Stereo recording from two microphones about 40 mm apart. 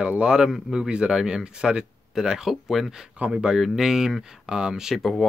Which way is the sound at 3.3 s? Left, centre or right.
Centre.